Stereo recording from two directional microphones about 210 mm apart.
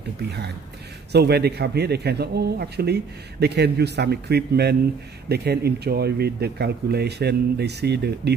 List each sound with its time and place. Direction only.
0.2 s a man's voice: 50° right (ahead or behind)